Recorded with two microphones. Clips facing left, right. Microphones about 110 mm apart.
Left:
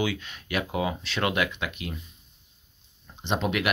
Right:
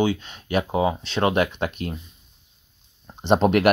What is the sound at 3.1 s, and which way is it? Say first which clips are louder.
Speech: right 9 dB; 40° right (ahead or behind).